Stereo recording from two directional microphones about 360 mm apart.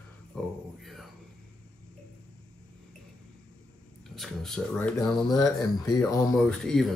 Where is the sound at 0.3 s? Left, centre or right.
Centre.